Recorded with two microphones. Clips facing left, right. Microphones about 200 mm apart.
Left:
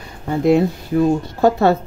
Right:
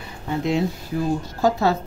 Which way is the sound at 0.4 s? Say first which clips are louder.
Left 8 dB; 55° left (ahead or behind).